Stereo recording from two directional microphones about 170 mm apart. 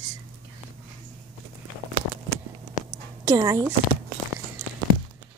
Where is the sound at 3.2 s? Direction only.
15° right (ahead or behind).